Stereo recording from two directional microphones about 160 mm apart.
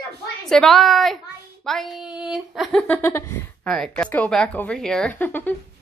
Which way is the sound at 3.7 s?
5° left (ahead or behind).